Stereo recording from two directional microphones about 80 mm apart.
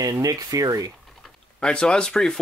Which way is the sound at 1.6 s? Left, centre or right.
Centre.